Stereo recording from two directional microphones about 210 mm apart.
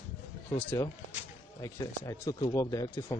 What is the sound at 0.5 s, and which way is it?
Speech, 15° left (ahead or behind).